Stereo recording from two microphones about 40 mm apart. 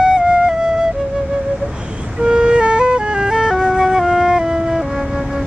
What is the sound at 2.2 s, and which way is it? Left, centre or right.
Music, right.